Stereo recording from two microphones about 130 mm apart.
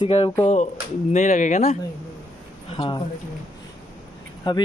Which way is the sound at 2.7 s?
45° left (ahead or behind).